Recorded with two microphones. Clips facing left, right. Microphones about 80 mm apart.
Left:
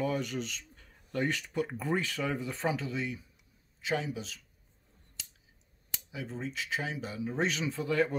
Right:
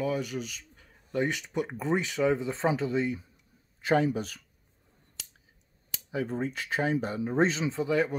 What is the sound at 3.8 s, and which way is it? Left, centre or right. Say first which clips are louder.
Speech: right 8 dB; right.